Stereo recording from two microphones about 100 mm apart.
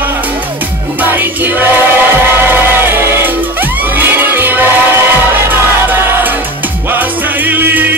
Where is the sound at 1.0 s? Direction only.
20° right (ahead or behind).